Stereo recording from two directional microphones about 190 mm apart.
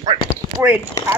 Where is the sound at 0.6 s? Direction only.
10° right (ahead or behind).